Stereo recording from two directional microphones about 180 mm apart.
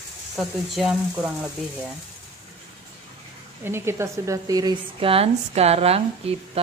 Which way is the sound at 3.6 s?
15° right (ahead or behind).